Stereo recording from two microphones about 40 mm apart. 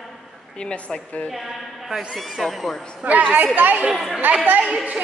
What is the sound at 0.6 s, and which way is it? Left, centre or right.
Speech, left.